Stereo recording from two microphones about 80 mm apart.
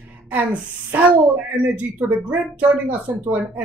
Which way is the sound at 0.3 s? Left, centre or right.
Right.